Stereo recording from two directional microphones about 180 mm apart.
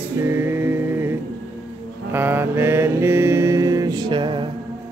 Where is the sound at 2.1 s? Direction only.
10° right (ahead or behind).